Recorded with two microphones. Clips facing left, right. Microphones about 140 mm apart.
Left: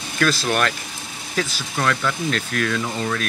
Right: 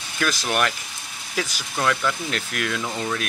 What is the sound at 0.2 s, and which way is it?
Speech, 15° right (ahead or behind).